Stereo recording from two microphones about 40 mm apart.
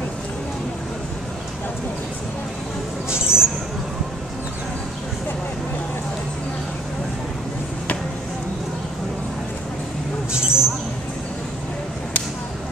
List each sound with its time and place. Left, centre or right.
3.1 s mouse: centre
10.3 s mouse: centre